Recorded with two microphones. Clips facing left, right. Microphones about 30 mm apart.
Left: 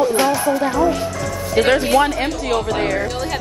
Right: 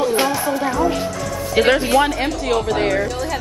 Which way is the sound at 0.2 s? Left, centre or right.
Centre.